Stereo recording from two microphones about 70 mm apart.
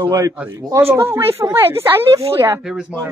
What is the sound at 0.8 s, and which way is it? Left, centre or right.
Speech, right.